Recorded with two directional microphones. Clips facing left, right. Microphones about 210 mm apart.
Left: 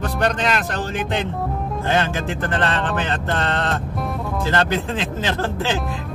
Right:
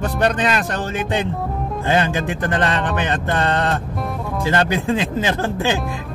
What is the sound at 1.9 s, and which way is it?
Speech, 15° right (ahead or behind).